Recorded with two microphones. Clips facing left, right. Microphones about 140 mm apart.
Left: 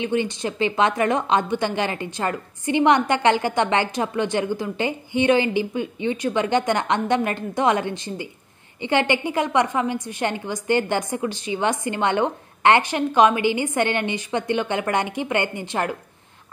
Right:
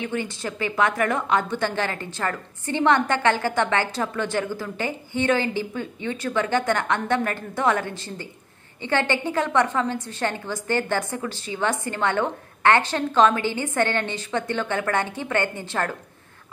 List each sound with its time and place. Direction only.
0.0 s a woman's voice: 20° left (ahead or behind)